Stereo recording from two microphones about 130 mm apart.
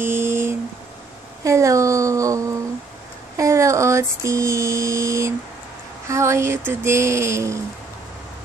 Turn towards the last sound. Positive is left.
turn(degrees=-20)  # may be behind; listen again after turning